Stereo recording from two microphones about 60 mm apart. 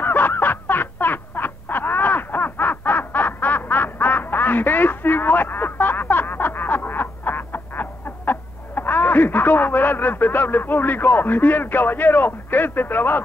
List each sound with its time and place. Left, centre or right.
0.0 s honk: left